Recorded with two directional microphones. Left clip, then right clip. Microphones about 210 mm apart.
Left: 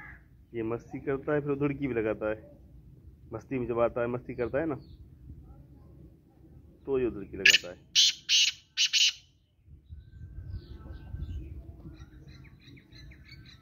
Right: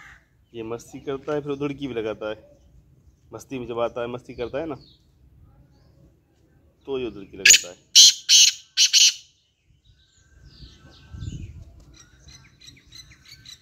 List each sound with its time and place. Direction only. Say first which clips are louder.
0.5 s speech: right 1 dB; centre (ahead or behind)
6.8 s speech: right 1 dB; 5° right (ahead or behind)
7.9 s bird: right 11 dB; 15° right (ahead or behind)
11.9 s squawk: right 5 dB; 50° right (ahead or behind)